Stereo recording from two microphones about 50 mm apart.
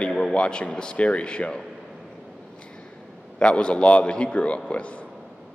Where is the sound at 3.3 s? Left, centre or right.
Centre.